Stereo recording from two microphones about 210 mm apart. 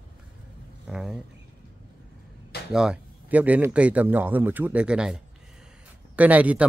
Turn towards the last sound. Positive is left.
turn(degrees=-5)  # may be behind; listen again after turning